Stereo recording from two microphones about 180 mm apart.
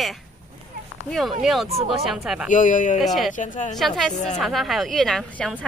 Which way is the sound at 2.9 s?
Centre (ahead or behind).